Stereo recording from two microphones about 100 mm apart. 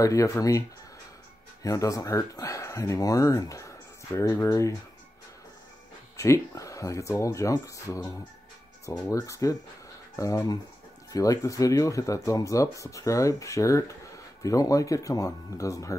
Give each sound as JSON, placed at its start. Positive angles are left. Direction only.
{"t": 0.0, "sound": "speech", "side_deg": 35}
{"t": 6.1, "sound": "speech", "side_deg": 30}